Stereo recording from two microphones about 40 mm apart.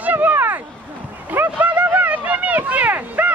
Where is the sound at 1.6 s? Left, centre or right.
Right.